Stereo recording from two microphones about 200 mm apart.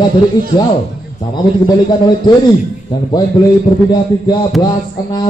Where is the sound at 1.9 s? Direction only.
20° left (ahead or behind).